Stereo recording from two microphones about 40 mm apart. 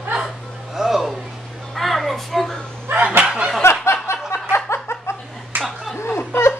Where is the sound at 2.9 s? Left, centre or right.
Right.